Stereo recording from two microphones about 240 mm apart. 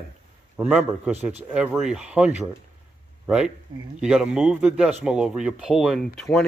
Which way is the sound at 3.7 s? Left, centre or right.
Centre.